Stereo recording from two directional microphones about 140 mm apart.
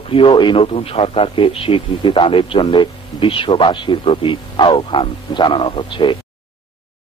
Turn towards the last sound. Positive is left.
turn(degrees=35)  # may be behind; listen again after turning